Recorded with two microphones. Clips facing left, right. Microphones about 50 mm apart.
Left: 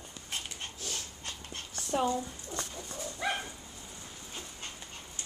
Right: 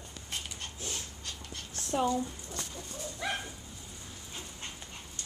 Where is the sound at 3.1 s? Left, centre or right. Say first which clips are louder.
Left 2 dB; centre.